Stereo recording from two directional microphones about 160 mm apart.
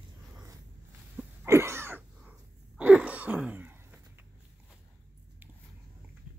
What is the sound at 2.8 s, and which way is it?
Throat clearing, 10° right (ahead or behind).